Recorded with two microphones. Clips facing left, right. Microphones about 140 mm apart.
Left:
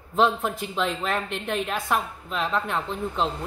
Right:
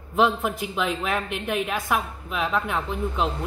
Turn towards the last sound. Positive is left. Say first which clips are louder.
# right 1 dB
turn(degrees=-5)  # may be behind; listen again after turning